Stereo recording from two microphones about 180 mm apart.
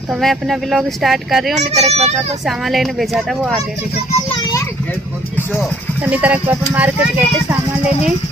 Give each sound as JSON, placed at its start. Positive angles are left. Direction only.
{"t": 0.2, "sound": "speech", "side_deg": 0}
{"t": 1.5, "sound": "a child's voice", "side_deg": -35}
{"t": 2.4, "sound": "speech", "side_deg": 0}
{"t": 4.4, "sound": "a sound", "side_deg": 20}
{"t": 5.6, "sound": "speech", "side_deg": -10}